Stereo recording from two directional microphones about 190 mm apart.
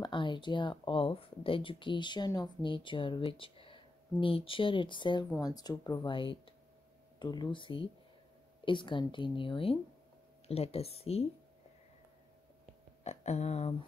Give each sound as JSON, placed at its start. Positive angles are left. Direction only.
{"t": 0.0, "sound": "speech", "side_deg": 25}
{"t": 13.0, "sound": "speech", "side_deg": 35}